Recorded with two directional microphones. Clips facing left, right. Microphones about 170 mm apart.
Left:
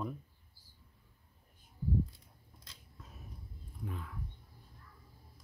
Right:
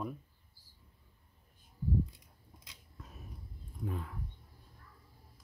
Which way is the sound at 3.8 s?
40° right (ahead or behind).